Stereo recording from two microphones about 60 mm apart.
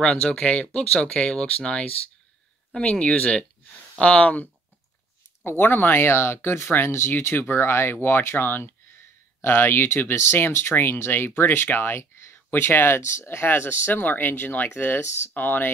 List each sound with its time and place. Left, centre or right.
0.0 s speech: centre
5.4 s speech: left